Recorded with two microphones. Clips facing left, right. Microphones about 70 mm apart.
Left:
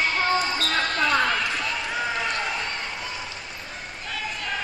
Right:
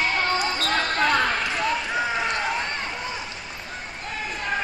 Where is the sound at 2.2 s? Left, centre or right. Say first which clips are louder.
Right 2 dB; right.